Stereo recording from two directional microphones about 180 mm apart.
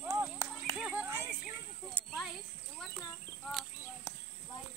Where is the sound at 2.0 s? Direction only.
10° left (ahead or behind).